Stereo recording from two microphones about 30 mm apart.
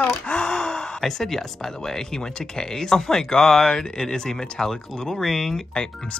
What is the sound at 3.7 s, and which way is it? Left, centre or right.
Speech, left.